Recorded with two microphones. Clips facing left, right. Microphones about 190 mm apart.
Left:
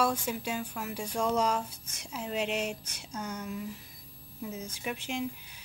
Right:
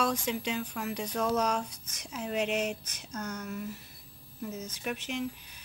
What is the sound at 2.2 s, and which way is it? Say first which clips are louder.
Speech: right 2 dB; 60° right (ahead or behind).